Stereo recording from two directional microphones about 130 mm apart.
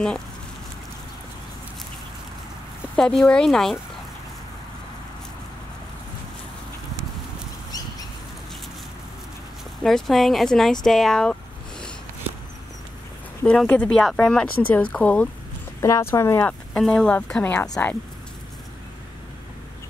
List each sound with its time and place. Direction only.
3.0 s speech: 5° left (ahead or behind)
9.8 s speech: centre (ahead or behind)
13.6 s speech: 5° left (ahead or behind)
15.8 s speech: 20° left (ahead or behind)